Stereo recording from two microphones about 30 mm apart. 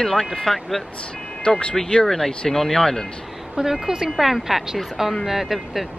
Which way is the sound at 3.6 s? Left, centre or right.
Right.